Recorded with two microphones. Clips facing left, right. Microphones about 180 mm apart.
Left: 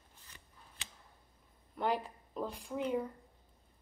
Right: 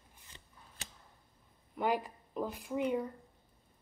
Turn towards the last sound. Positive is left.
turn(degrees=-5)  # may be behind; listen again after turning